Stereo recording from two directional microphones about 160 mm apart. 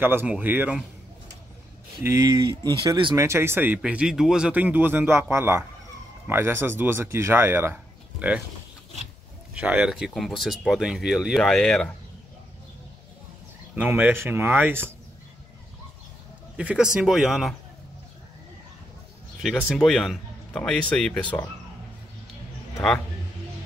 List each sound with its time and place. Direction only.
0.0 s speech: 15° right (ahead or behind)
2.0 s speech: 20° right (ahead or behind)
3.2 s speech: 15° right (ahead or behind)
9.5 s speech: 10° right (ahead or behind)
13.7 s speech: 10° right (ahead or behind)
16.5 s speech: 5° right (ahead or behind)
19.4 s speech: centre (ahead or behind)